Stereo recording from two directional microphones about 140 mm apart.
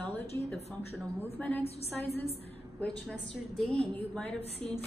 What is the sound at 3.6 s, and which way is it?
Speech, 5° left (ahead or behind).